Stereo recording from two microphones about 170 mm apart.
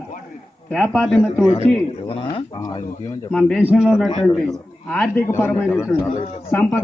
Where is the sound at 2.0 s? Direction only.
30° left (ahead or behind).